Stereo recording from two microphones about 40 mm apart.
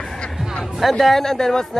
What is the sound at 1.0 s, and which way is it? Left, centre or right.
Speech, centre.